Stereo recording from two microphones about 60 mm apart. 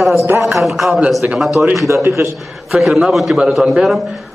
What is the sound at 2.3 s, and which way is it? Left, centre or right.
A man's voice, centre.